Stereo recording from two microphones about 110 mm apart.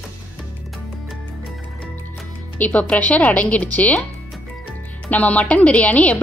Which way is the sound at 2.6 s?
10° left (ahead or behind).